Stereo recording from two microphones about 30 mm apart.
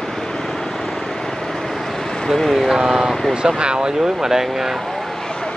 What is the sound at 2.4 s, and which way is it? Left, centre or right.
Speech, centre.